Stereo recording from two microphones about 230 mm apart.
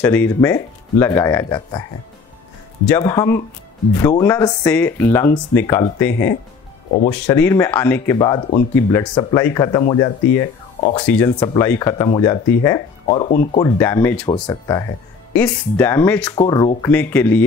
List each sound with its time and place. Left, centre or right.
0.0 s speech: centre
2.9 s speech: centre
11.1 s speech: centre
13.3 s speech: left
13.6 s speech: centre
16.3 s speech: centre